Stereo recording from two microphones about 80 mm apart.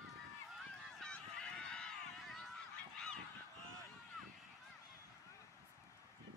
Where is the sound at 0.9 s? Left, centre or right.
Centre.